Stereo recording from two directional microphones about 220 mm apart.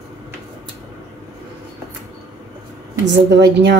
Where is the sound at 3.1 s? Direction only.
50° right (ahead or behind).